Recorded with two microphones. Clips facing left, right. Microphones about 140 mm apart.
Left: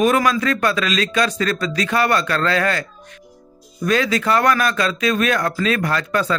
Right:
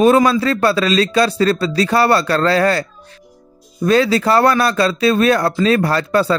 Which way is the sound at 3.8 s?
30° right (ahead or behind).